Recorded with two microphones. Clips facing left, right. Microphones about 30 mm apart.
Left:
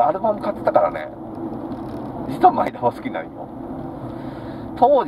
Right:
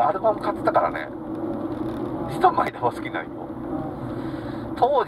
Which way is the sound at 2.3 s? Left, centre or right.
Right.